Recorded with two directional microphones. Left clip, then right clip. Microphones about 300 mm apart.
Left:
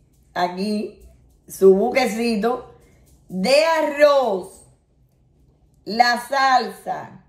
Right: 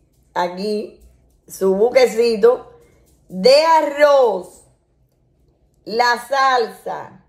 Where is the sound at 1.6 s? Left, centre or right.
Centre.